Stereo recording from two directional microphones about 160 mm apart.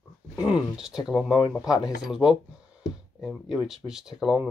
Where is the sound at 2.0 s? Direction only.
5° right (ahead or behind).